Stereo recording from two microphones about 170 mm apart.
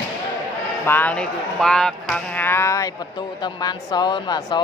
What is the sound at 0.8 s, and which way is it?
Speech, 10° left (ahead or behind).